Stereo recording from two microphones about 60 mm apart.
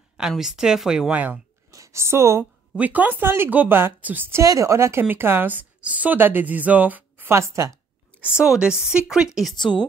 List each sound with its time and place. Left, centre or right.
0.4 s speech: centre
1.1 s speech: right
1.7 s a woman's voice: right
2.8 s speech: right
4.3 s speech: right
5.0 s speech: right
7.2 s speech: right
8.5 s speech: centre
9.5 s a woman's voice: centre